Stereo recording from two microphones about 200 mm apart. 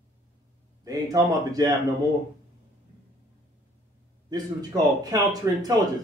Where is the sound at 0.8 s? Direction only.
20° right (ahead or behind).